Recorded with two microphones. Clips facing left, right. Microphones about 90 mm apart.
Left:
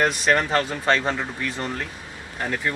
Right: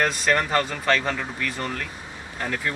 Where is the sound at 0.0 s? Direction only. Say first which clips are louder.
Left 2 dB; 20° left (ahead or behind).